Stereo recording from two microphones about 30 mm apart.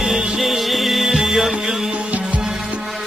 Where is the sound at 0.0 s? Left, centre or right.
Centre.